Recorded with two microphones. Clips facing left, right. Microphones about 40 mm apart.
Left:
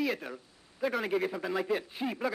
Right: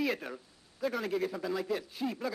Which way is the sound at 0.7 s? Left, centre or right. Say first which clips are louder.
Left 2 dB; centre.